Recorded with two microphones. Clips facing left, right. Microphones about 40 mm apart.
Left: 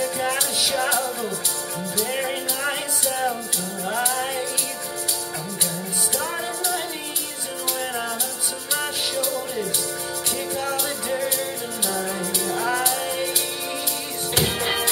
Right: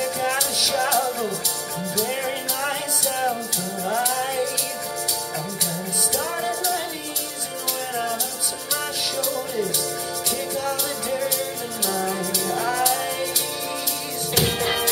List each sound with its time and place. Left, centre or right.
0.0 s music: centre
0.6 s music: left
2.0 s music: centre
3.8 s music: centre
9.1 s music: centre
12.5 s music: centre
14.4 s music: centre